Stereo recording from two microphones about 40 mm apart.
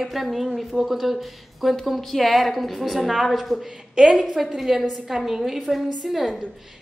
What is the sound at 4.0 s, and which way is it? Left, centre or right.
Speech, centre.